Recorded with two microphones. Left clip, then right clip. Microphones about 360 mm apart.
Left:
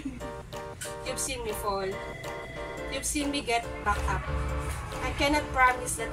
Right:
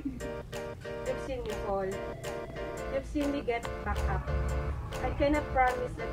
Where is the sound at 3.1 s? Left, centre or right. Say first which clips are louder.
Left 4 dB; left.